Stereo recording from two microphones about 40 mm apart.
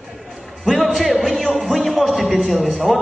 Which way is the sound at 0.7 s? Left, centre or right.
Centre.